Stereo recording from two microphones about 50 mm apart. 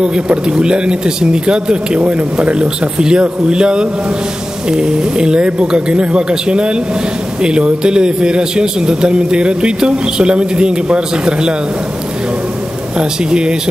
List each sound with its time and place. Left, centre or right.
0.0 s a man's voice: centre
12.9 s a man's voice: centre